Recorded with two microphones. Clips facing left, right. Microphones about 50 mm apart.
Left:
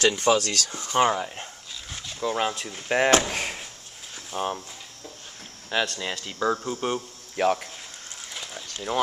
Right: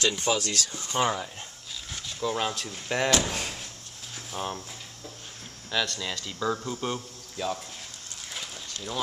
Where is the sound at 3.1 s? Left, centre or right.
Left.